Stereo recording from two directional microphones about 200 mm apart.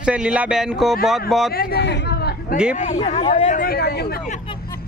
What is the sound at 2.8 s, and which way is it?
Speech, 35° left (ahead or behind).